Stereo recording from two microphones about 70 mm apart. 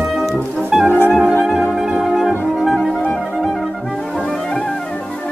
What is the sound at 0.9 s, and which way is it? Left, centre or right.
Music, left.